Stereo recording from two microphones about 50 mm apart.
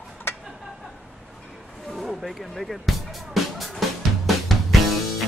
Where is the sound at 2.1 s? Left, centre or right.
Centre.